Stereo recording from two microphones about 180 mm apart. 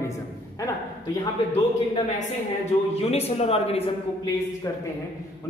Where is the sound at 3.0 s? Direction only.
35° left (ahead or behind).